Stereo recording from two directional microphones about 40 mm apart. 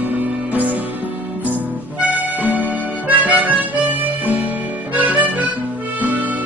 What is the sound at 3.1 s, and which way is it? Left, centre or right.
Harmonica, right.